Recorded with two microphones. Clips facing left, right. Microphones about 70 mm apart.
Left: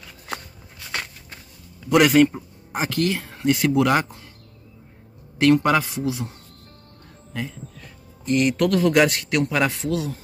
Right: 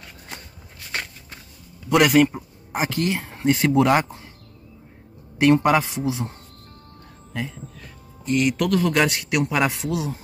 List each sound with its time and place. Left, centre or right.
1.9 s speech: centre; by 4.2 s right
5.4 s speech: centre
7.3 s a man's voice: centre